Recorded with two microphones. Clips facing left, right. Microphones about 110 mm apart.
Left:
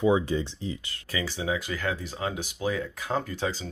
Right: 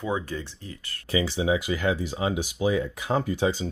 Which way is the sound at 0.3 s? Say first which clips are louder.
Left 5 dB; 20° left (ahead or behind).